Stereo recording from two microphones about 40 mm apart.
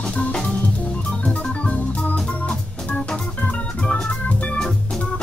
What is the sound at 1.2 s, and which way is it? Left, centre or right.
Organ, left.